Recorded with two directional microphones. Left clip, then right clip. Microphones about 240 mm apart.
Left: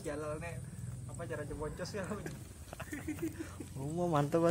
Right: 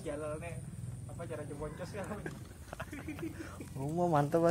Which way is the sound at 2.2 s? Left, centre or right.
Centre.